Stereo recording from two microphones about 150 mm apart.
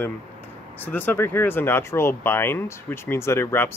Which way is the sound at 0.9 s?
10° left (ahead or behind).